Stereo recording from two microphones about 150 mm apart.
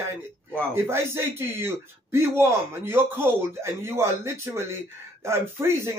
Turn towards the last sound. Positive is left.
turn(degrees=-15)  # may be behind; listen again after turning